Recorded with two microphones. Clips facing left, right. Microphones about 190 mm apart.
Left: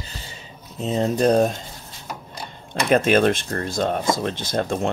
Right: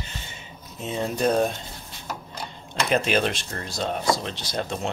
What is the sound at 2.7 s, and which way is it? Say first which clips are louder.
Speech: left 5 dB; 50° left (ahead or behind).